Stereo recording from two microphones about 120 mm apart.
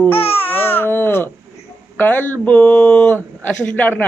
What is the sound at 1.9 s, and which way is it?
Speech, 15° left (ahead or behind).